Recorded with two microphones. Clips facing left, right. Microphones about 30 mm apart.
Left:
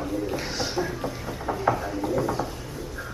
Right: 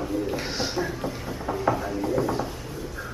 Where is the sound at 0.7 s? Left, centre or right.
Centre.